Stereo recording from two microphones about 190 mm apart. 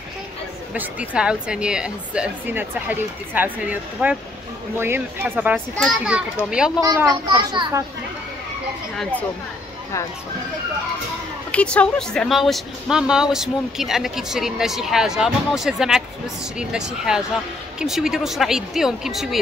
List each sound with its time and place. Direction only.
0.7 s a woman's voice: 5° right (ahead or behind)
6.8 s a child's voice: 20° right (ahead or behind)
11.5 s speech: 5° left (ahead or behind)